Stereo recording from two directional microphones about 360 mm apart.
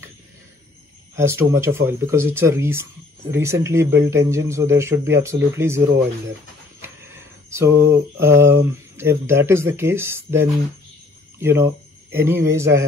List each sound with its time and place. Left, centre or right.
1.1 s speech: centre
7.4 s a sound: centre
7.7 s mantra: right
8.2 s speech: centre